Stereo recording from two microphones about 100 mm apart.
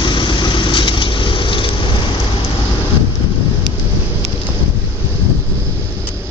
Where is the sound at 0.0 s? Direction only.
50° left (ahead or behind).